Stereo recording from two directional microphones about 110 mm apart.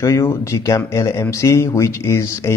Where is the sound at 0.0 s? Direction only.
25° left (ahead or behind).